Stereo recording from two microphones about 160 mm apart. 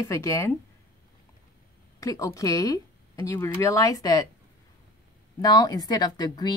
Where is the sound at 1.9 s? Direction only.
20° left (ahead or behind).